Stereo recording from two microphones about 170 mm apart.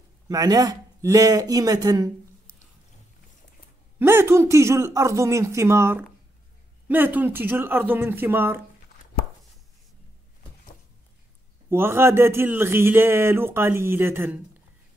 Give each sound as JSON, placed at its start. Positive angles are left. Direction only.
{"t": 0.3, "sound": "speech", "side_deg": -20}
{"t": 4.0, "sound": "a man's voice", "side_deg": -15}
{"t": 11.7, "sound": "a man's voice", "side_deg": -15}